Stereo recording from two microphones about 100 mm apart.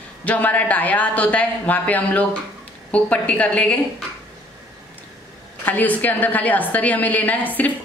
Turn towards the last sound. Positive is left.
turn(degrees=15)  # may be behind; listen again after turning